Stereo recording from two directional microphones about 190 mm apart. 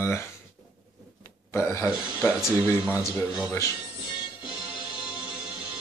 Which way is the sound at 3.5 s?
15° left (ahead or behind).